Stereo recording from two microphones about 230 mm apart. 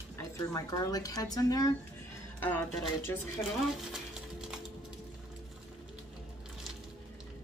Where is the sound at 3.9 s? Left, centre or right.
Centre.